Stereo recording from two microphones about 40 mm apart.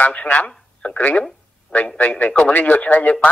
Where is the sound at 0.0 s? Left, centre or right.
Left.